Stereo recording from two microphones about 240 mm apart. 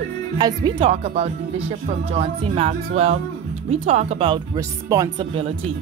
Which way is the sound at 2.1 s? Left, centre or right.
Right.